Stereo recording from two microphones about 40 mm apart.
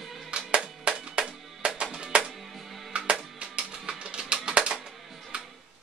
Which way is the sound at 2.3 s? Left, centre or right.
Centre.